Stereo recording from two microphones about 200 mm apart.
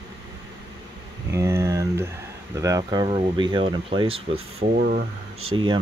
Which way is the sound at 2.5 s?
15° right (ahead or behind).